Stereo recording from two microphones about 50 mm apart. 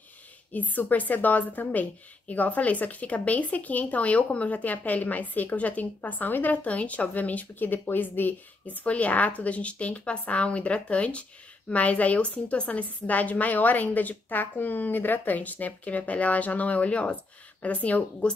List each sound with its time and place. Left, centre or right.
0.5 s a woman's voice: left